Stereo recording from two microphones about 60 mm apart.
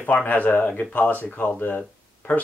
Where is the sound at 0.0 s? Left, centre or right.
Left.